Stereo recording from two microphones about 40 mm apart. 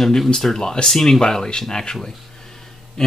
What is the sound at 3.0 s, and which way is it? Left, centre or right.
Speech, centre.